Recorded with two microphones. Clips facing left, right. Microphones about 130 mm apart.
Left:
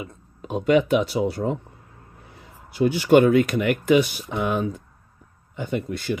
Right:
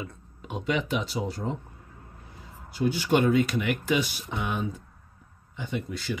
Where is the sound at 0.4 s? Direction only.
45° left (ahead or behind).